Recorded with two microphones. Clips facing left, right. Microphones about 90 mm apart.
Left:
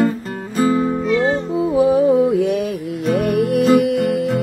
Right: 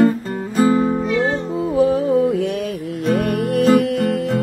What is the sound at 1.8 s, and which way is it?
Music, 15° left (ahead or behind).